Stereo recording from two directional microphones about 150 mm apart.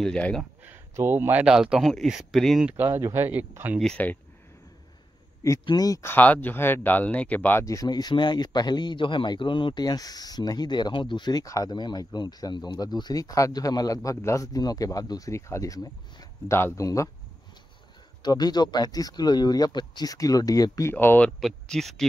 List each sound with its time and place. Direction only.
0.0 s speech: 5° left (ahead or behind)
0.9 s speech: 15° right (ahead or behind)
2.8 s speech: 15° right (ahead or behind)
3.8 s speech: 10° left (ahead or behind)
5.7 s speech: 25° left (ahead or behind)
18.2 s speech: 25° left (ahead or behind)
20.9 s speech: 10° left (ahead or behind)
21.4 s speech: centre (ahead or behind)